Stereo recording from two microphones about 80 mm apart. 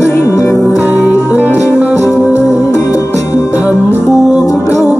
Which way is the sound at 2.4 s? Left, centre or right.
Left.